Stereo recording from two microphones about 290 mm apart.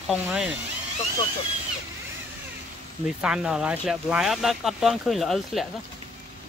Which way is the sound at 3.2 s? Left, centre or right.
Centre.